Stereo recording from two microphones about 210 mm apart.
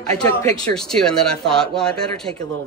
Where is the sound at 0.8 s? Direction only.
5° left (ahead or behind).